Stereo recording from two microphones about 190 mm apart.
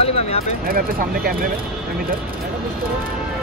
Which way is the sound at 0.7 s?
50° right (ahead or behind).